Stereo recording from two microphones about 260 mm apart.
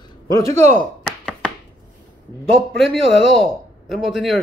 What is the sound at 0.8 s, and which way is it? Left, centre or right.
Chopping, centre.